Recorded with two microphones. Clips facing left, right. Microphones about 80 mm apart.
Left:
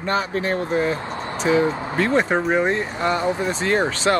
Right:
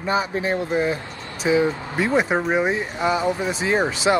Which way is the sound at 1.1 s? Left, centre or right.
Left.